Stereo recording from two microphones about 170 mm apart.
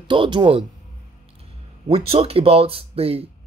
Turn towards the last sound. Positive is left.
turn(degrees=-35)  # may be behind; listen again after turning